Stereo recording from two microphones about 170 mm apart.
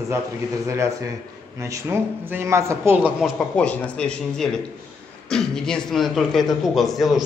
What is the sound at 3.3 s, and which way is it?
Speech, 5° left (ahead or behind).